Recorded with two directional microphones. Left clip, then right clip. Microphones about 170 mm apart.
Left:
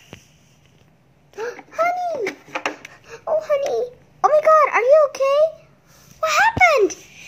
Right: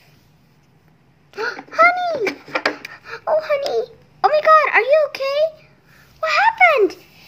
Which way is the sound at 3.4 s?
10° left (ahead or behind).